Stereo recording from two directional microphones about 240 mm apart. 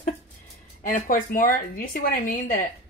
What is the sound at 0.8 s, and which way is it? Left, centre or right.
Speech, left.